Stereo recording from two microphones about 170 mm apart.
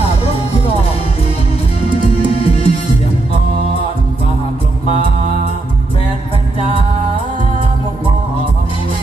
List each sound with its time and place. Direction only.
2.1 s music: 35° left (ahead or behind)